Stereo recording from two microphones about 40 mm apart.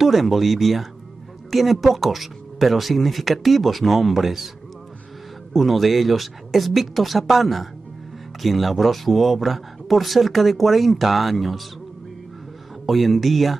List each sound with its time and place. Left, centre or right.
0.0 s speech: centre
5.5 s speech: centre
12.8 s speech: centre